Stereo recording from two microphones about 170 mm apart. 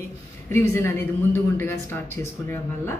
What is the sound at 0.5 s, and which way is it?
Speech, 15° left (ahead or behind).